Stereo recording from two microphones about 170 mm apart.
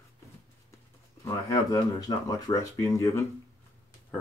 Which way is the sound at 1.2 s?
20° left (ahead or behind).